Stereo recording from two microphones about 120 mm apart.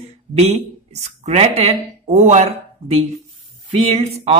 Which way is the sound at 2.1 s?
70° right (ahead or behind).